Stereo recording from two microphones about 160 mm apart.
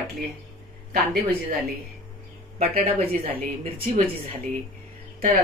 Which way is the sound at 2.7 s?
65° right (ahead or behind).